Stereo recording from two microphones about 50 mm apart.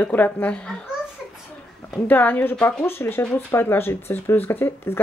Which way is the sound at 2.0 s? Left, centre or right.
Left.